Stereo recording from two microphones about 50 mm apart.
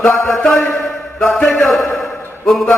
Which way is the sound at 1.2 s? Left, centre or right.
Left.